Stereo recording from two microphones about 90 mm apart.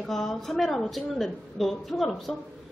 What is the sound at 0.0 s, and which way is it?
Speech, 5° left (ahead or behind).